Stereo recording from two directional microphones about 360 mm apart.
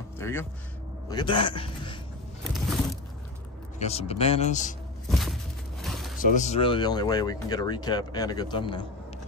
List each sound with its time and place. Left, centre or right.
0.2 s speech: centre
3.8 s speech: centre
5.1 s a sound: centre
6.1 s speech: left